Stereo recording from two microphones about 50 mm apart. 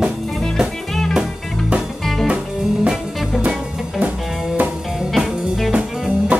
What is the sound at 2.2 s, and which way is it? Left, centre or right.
Music, right.